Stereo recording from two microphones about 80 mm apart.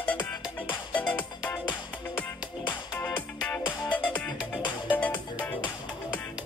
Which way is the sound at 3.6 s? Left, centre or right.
Left.